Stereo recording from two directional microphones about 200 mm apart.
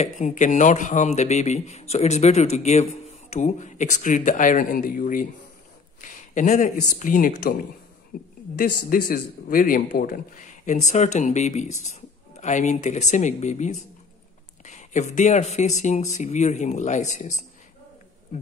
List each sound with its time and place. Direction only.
0.0 s a woman's voice: 40° left (ahead or behind)